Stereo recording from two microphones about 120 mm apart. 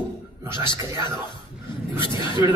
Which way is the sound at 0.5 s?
40° left (ahead or behind).